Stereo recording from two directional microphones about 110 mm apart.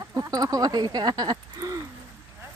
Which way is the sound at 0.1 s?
35° right (ahead or behind).